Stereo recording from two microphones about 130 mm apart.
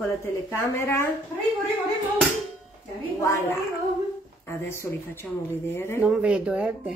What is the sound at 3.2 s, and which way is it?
Speech, 25° left (ahead or behind).